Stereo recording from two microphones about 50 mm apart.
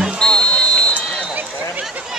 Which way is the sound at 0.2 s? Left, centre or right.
Centre.